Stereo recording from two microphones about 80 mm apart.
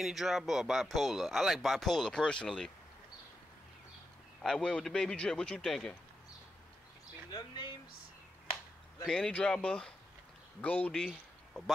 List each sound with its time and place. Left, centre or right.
0.0 s speech: centre
4.4 s a man's voice: centre
7.2 s a sound: left
9.0 s a man's voice: centre
10.9 s speech: centre